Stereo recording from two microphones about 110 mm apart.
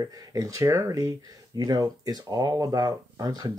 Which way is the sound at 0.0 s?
30° right (ahead or behind).